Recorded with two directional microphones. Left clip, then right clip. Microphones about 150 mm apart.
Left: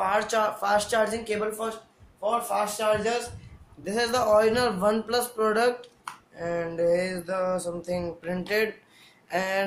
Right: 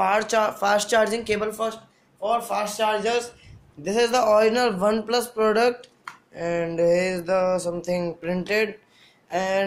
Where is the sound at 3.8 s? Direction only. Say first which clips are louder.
Right 5 dB; 35° right (ahead or behind).